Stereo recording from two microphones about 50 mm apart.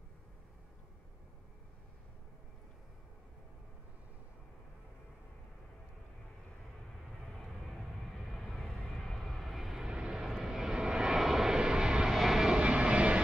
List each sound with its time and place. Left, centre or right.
7.3 s vehicle: centre
8.3 s vehicle: centre; by 13.2 s right